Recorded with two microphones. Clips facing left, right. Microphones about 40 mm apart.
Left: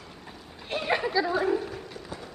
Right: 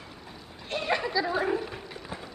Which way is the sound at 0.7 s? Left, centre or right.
Centre.